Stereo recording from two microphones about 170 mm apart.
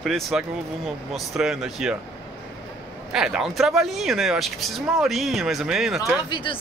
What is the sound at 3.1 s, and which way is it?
Speech, 5° right (ahead or behind).